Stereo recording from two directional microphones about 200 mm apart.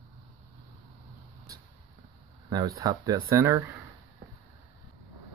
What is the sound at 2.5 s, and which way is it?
Speech, 15° right (ahead or behind).